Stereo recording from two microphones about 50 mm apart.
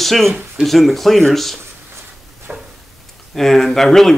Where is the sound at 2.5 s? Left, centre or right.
Right.